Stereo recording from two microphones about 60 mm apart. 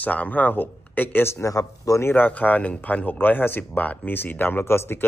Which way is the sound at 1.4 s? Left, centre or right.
Left.